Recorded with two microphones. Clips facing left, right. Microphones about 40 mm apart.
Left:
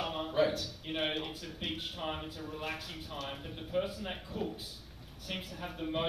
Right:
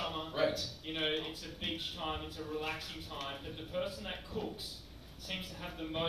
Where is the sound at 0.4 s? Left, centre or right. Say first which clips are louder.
Left 3 dB; left.